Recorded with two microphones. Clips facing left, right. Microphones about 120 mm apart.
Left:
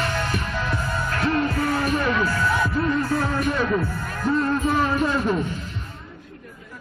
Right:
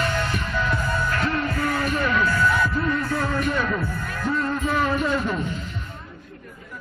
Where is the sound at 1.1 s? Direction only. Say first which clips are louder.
Left 2 dB; 35° left (ahead or behind).